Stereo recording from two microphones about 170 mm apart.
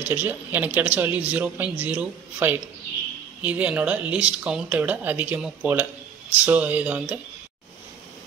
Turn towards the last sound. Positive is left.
turn(degrees=-10)  # may be behind; listen again after turning